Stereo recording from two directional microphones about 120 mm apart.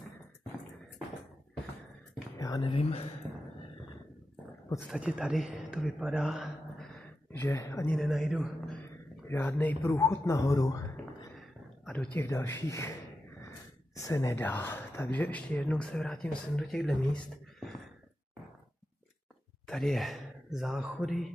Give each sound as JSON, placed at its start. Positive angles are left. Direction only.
{"t": 2.3, "sound": "a sound", "side_deg": 25}
{"t": 2.6, "sound": "speech", "side_deg": 50}
{"t": 4.8, "sound": "a man's voice", "side_deg": -10}
{"t": 7.3, "sound": "speech", "side_deg": 25}
{"t": 7.9, "sound": "mantra", "side_deg": 0}
{"t": 9.3, "sound": "a man's voice", "side_deg": 20}
{"t": 11.9, "sound": "speech", "side_deg": 15}
{"t": 13.9, "sound": "speech", "side_deg": 25}
{"t": 19.7, "sound": "speech", "side_deg": 0}